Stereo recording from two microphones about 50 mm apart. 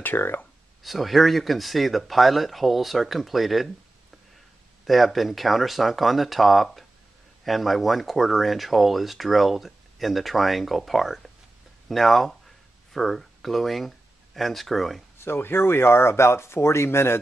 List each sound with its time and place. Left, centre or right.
0.0 s speech: left
0.8 s speech: centre
4.8 s speech: centre
15.1 s speech: left